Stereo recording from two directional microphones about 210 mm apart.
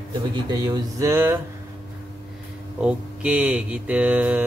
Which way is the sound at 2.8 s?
5° right (ahead or behind).